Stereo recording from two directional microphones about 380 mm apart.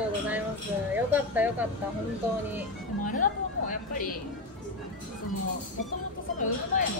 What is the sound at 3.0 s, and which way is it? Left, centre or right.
A woman's voice, centre.